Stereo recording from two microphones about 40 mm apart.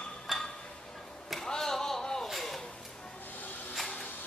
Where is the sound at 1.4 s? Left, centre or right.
Centre.